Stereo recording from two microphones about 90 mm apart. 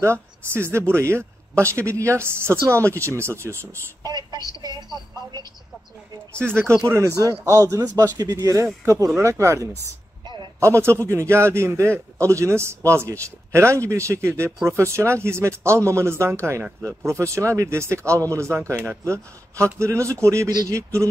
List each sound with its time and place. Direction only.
0.0 s a man's voice: 30° right (ahead or behind)
4.0 s speech: 45° right (ahead or behind)
6.4 s speech: 25° right (ahead or behind)
7.2 s a man's voice: 40° right (ahead or behind)
10.2 s a sound: 55° right (ahead or behind)
10.6 s a man's voice: 30° right (ahead or behind)